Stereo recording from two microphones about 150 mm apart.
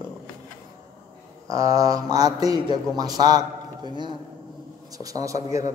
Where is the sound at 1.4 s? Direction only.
20° right (ahead or behind).